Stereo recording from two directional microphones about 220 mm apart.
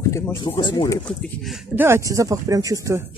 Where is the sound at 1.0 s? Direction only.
Centre (ahead or behind); by 3.0 s 15° right (ahead or behind).